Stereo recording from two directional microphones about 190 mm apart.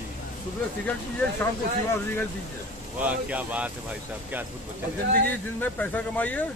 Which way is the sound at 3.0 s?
10° right (ahead or behind).